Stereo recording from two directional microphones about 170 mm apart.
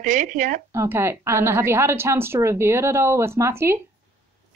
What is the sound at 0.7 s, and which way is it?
A woman's voice, 15° right (ahead or behind).